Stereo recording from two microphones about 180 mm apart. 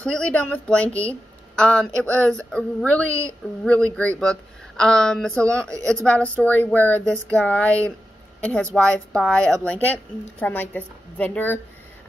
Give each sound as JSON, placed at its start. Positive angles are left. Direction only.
{"t": 0.0, "sound": "a woman's voice", "side_deg": 5}
{"t": 3.1, "sound": "a woman's voice", "side_deg": -15}
{"t": 3.6, "sound": "a woman's voice", "side_deg": 5}